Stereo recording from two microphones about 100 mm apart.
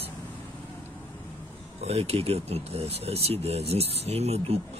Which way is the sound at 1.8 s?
90° right.